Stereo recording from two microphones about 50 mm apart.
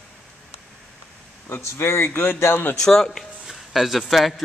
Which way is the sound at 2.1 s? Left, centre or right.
Left.